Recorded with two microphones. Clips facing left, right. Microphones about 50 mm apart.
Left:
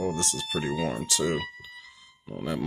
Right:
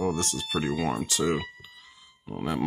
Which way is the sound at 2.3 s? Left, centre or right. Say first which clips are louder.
Right 2 dB; right.